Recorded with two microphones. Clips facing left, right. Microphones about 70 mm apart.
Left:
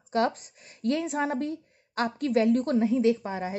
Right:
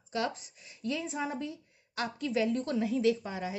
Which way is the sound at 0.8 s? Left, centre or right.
Left.